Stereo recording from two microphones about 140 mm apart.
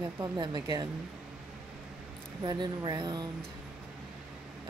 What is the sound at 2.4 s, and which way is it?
Speech, 30° right (ahead or behind).